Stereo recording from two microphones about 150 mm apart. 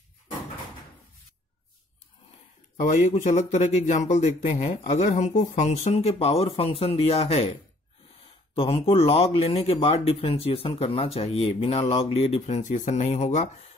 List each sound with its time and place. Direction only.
2.8 s speech: 55° left (ahead or behind)
8.5 s speech: 40° left (ahead or behind)